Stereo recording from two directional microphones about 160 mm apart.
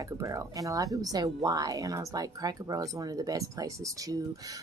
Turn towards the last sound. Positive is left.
turn(degrees=-20)  # may be behind; listen again after turning